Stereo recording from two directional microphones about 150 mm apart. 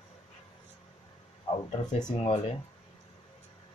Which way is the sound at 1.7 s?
50° left (ahead or behind).